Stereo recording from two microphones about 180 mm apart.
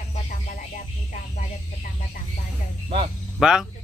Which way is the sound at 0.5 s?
50° left (ahead or behind).